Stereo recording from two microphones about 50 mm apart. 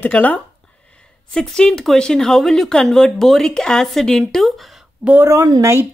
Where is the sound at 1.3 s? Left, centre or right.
Centre.